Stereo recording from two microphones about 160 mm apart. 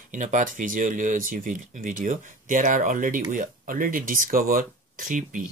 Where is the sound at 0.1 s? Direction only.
55° right (ahead or behind).